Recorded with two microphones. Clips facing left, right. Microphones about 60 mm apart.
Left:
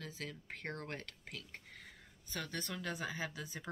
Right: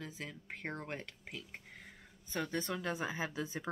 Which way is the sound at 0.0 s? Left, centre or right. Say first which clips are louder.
Right 1 dB; centre.